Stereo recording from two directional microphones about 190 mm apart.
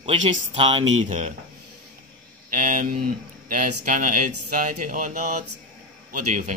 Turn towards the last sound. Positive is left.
turn(degrees=-40)  # may be behind; listen again after turning